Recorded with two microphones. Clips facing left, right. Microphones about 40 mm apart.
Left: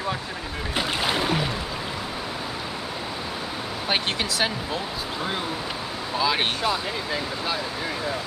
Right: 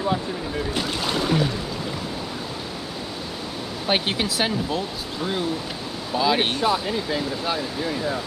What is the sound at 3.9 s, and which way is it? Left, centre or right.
Speech, centre.